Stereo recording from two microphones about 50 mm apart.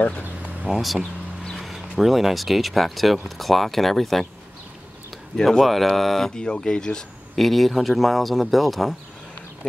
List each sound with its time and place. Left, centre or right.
0.0 s speech: left
0.7 s speech: centre
5.3 s speech: centre
7.3 s speech: centre